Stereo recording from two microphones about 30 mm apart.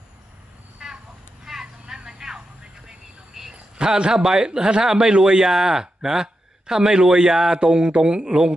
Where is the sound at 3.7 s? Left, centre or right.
Right.